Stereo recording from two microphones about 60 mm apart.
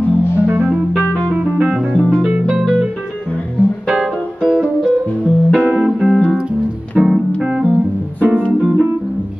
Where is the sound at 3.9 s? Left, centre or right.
Centre.